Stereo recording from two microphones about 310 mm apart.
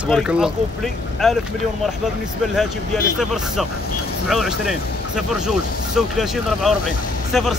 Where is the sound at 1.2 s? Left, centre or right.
Centre.